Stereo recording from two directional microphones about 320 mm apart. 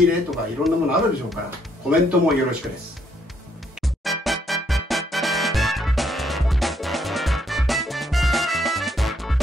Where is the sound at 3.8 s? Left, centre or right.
Centre.